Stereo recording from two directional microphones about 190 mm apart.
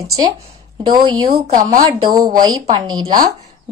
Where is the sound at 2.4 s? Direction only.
25° right (ahead or behind).